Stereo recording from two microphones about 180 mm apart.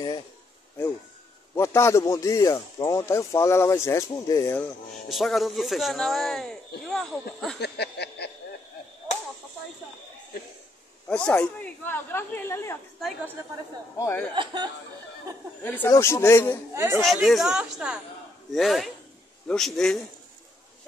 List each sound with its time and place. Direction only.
1.5 s speech: 15° left (ahead or behind)
5.1 s speech: centre (ahead or behind)
7.6 s a sound: 70° left (ahead or behind)
11.1 s speech: 5° left (ahead or behind)
13.9 s speech: 15° left (ahead or behind)
14.3 s speech: 25° right (ahead or behind)
15.6 s speech: 10° left (ahead or behind)
17.0 s speech: centre (ahead or behind)